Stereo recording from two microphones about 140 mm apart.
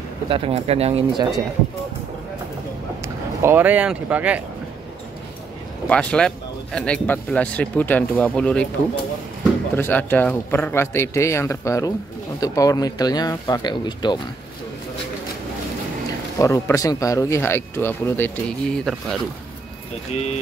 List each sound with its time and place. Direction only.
0.3 s speech: 45° right (ahead or behind)
3.0 s speech: 15° right (ahead or behind)
5.9 s speech: 10° left (ahead or behind); by 14.2 s 30° left (ahead or behind)
16.3 s speech: 20° left (ahead or behind)
20.1 s speech: 50° left (ahead or behind)